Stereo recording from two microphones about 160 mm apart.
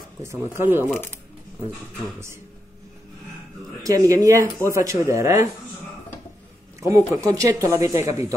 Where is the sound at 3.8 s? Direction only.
20° right (ahead or behind).